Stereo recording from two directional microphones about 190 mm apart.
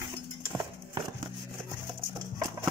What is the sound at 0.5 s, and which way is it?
Clip-clop, 20° right (ahead or behind).